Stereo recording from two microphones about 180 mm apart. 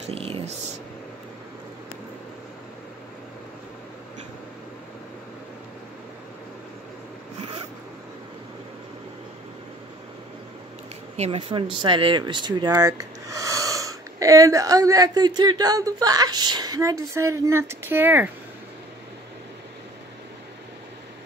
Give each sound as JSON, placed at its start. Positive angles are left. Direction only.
{"t": 0.1, "sound": "speech", "side_deg": -35}
{"t": 11.1, "sound": "speech", "side_deg": -35}